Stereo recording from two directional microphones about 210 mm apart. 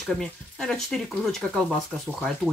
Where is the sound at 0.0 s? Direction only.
Centre (ahead or behind).